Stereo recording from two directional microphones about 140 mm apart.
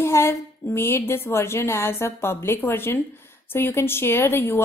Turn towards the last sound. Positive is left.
turn(degrees=15)  # may be behind; listen again after turning